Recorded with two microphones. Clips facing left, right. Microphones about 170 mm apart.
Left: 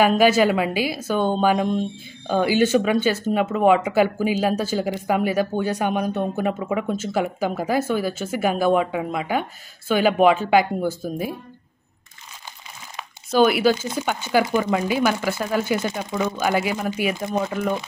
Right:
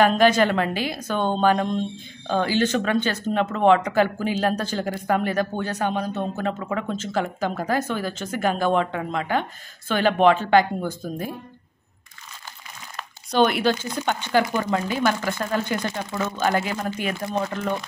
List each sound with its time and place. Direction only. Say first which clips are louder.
0.0 s speech: left 1 dB; 10° left (ahead or behind)
12.9 s a sound: left 2 dB; 5° left (ahead or behind)
13.9 s speech: left 1 dB; 10° left (ahead or behind)